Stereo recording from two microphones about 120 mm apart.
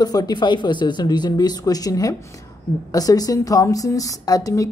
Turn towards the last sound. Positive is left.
turn(degrees=30)  # may be behind; listen again after turning